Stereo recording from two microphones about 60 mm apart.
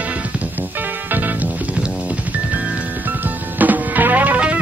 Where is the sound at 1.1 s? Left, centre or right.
Right.